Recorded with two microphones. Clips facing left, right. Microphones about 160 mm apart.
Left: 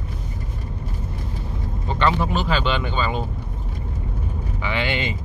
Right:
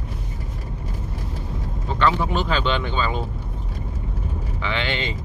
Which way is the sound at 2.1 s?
5° left (ahead or behind).